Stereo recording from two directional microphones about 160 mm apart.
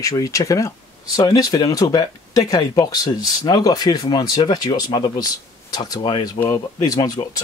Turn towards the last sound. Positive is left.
turn(degrees=25)  # may be behind; listen again after turning